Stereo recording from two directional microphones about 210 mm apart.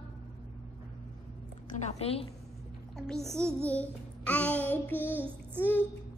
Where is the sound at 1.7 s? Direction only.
30° left (ahead or behind).